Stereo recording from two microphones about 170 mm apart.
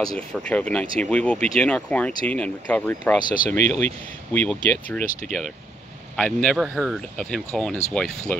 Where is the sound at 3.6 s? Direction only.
45° right (ahead or behind).